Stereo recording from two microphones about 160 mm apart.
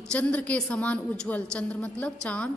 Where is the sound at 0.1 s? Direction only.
10° left (ahead or behind).